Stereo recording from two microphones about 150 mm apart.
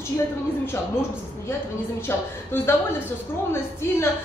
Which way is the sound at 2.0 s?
15° left (ahead or behind).